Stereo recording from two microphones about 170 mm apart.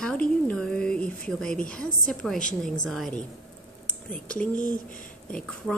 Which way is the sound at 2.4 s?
50° left (ahead or behind).